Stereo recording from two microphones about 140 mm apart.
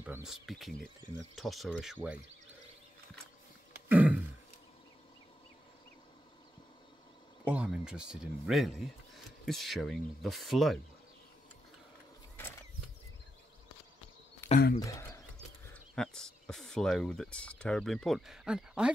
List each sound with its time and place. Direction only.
0.0 s speech: 5° right (ahead or behind)
3.9 s grunt: 10° right (ahead or behind)
7.4 s speech: 10° right (ahead or behind)
14.4 s a sound: 15° left (ahead or behind)
15.7 s speech: 5° left (ahead or behind)